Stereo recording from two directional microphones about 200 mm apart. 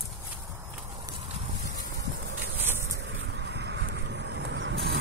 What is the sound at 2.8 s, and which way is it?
Vehicle, 65° right (ahead or behind).